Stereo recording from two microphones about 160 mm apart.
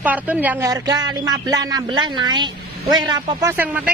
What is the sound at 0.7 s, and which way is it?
A man's voice, 25° right (ahead or behind).